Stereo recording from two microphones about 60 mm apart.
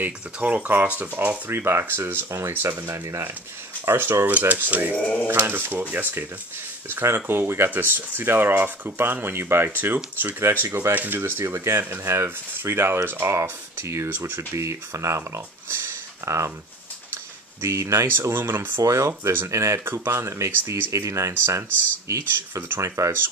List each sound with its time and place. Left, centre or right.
0.0 s speech: right
1.5 s speech: right
2.3 s speech: right
4.3 s speech: right
5.0 s speech: left
5.3 s speech: right
5.7 s speech: right
14.0 s speech: right
17.1 s a sound: right
18.3 s speech: right
18.8 s speech: right
19.8 s speech: right